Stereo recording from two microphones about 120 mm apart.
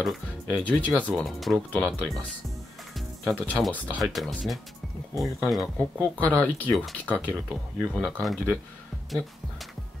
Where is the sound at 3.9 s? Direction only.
Centre (ahead or behind).